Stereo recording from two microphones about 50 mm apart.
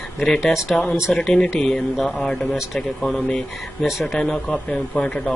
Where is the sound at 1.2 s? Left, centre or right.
Centre.